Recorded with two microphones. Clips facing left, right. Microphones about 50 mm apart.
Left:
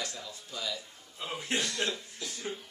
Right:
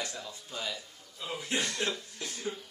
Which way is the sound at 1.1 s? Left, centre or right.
Left.